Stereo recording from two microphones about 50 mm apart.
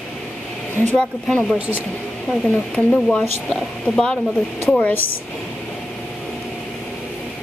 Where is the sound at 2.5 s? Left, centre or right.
Left.